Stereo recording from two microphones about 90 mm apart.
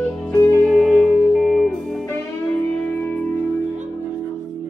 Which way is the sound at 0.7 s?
Centre (ahead or behind).